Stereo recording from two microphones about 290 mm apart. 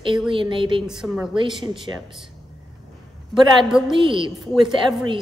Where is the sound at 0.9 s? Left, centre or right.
Centre.